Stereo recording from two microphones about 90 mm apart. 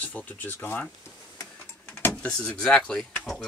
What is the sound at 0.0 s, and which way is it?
Speech, 15° left (ahead or behind).